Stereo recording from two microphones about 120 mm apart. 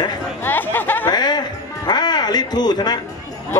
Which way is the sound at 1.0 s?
35° left (ahead or behind).